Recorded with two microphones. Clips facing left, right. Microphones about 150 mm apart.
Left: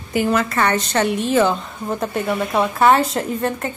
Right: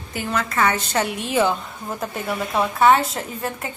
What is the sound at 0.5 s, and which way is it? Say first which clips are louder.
A woman's voice: left 2 dB; 5° right (ahead or behind).